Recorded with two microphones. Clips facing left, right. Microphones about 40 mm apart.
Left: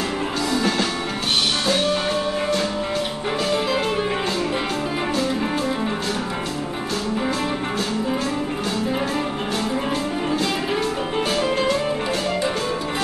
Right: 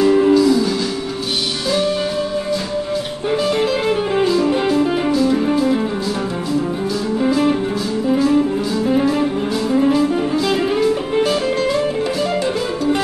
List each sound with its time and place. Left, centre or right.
0.3 s music: left
4.2 s music: left